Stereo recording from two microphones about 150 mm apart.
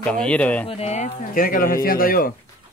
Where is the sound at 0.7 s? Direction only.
45° left (ahead or behind); by 2.3 s 70° left (ahead or behind).